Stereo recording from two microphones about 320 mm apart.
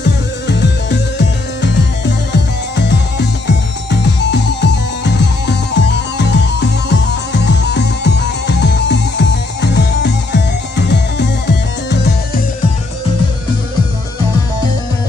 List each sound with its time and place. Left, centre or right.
0.5 s music: left